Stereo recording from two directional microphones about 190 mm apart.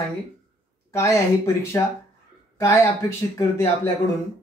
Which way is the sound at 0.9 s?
15° left (ahead or behind).